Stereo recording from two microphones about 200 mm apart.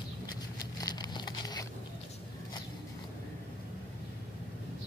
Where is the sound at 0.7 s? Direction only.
20° left (ahead or behind).